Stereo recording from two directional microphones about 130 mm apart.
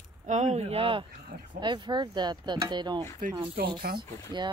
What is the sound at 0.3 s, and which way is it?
Speech, 60° right (ahead or behind).